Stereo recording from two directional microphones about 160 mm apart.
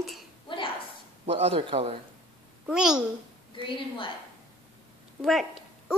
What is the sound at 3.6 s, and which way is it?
Speech, 30° left (ahead or behind).